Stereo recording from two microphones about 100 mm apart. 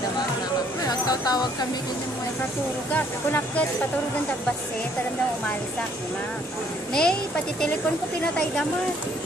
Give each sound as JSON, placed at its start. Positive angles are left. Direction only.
{"t": 0.8, "sound": "a sound", "side_deg": 40}
{"t": 2.9, "sound": "speech", "side_deg": 20}
{"t": 6.9, "sound": "a woman's voice", "side_deg": 10}